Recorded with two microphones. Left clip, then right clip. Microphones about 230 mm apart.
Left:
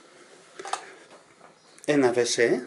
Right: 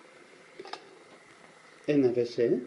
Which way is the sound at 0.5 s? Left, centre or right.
Centre.